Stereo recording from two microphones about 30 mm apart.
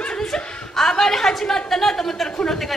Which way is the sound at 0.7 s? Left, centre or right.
Centre.